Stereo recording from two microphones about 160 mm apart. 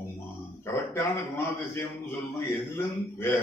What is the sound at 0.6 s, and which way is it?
A man's voice, 15° left (ahead or behind).